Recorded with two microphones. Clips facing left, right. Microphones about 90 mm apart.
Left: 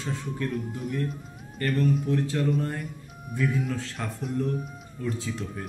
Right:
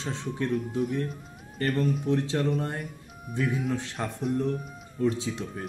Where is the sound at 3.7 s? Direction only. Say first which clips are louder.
Right 2 dB; 20° right (ahead or behind).